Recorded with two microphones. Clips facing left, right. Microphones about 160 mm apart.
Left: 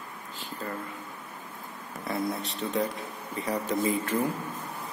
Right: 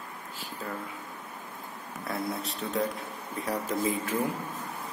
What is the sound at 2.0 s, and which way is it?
Speech, centre (ahead or behind).